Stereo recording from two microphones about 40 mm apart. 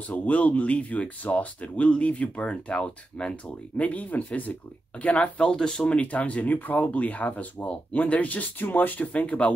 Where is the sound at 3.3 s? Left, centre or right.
Left.